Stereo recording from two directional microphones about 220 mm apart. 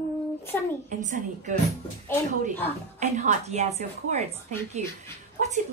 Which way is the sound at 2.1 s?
10° left (ahead or behind).